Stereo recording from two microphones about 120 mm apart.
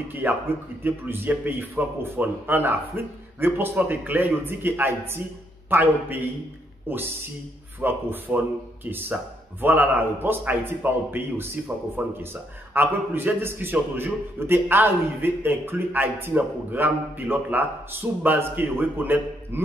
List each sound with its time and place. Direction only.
0.1 s a man's voice: 15° right (ahead or behind)
9.6 s a man's voice: 15° right (ahead or behind)